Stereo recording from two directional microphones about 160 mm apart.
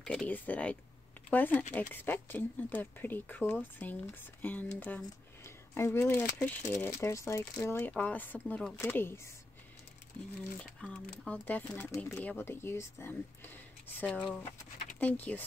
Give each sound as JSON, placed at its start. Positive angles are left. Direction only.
{"t": 0.0, "sound": "speech", "side_deg": 5}
{"t": 10.6, "sound": "speech", "side_deg": 5}